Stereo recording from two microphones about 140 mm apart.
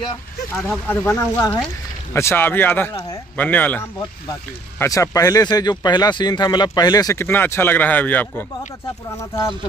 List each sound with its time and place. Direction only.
0.7 s speech: 15° left (ahead or behind)